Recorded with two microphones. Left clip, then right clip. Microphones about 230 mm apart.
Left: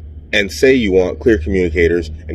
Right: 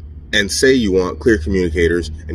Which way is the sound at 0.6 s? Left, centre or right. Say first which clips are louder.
Left 3 dB; centre.